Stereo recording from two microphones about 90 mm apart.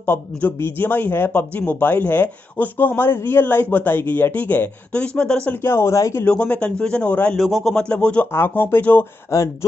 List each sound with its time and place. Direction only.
0.0 s speech: 25° left (ahead or behind)
5.6 s speech: 30° left (ahead or behind)
6.2 s a man's voice: 15° left (ahead or behind)
7.3 s a man's voice: centre (ahead or behind)
7.7 s a man's voice: 10° left (ahead or behind)
8.3 s speech: 25° left (ahead or behind)
9.3 s speech: 35° left (ahead or behind)